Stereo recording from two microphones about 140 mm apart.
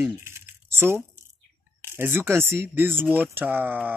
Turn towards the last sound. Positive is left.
turn(degrees=-15)  # may be behind; listen again after turning